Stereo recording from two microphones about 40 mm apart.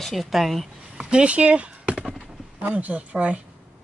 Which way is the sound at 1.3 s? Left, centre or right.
Right.